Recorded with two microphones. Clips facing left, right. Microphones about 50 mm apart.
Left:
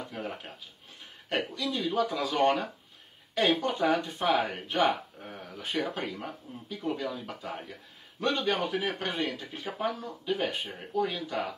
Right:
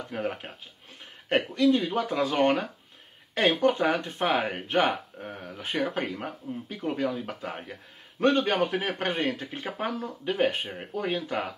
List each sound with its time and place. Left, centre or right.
0.1 s speech: right